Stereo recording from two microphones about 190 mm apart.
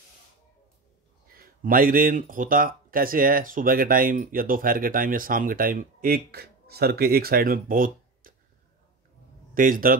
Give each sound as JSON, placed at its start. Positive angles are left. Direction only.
{"t": 1.3, "sound": "speech", "side_deg": -50}
{"t": 9.5, "sound": "speech", "side_deg": -45}